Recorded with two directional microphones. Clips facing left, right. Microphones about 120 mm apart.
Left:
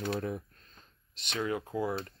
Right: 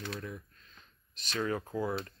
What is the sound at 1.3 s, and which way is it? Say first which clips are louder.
Speech: left 1 dB; 15° left (ahead or behind).